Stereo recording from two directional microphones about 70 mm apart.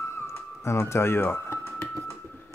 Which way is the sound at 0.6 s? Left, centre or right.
Left.